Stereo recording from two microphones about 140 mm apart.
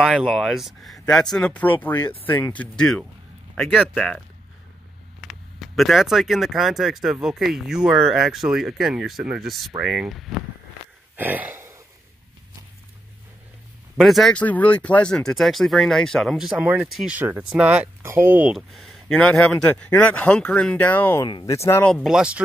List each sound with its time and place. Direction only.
0.0 s speech: 5° right (ahead or behind)
5.2 s speech: centre (ahead or behind)
11.1 s a sound: 10° right (ahead or behind)
13.9 s speech: centre (ahead or behind)
17.2 s speech: 15° right (ahead or behind)
18.5 s speech: centre (ahead or behind)
21.2 s speech: 35° left (ahead or behind)
21.5 s speech: 20° left (ahead or behind)
22.0 s speech: 5° right (ahead or behind)